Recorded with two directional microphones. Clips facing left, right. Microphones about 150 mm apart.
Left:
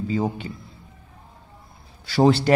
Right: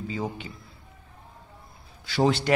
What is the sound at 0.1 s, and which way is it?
Speech, 40° left (ahead or behind).